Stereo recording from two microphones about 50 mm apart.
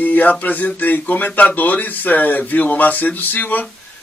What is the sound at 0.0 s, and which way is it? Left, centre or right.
Speech, left.